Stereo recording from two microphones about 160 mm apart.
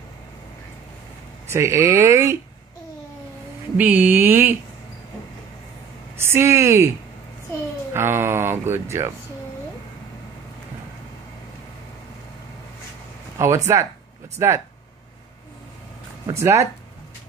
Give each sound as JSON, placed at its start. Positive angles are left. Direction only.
{"t": 1.5, "sound": "speech", "side_deg": -20}
{"t": 3.7, "sound": "speech", "side_deg": -10}
{"t": 6.1, "sound": "speech", "side_deg": -15}
{"t": 7.9, "sound": "speech", "side_deg": -15}
{"t": 13.4, "sound": "speech", "side_deg": -15}
{"t": 16.3, "sound": "speech", "side_deg": -20}